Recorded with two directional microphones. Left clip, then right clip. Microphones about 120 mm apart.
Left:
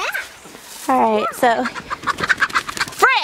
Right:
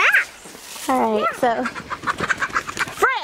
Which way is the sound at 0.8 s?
5° left (ahead or behind).